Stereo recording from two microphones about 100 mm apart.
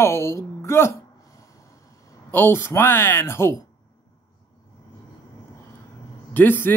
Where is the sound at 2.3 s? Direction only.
25° left (ahead or behind).